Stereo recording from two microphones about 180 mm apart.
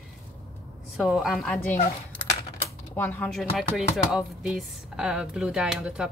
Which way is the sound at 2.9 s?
10° left (ahead or behind).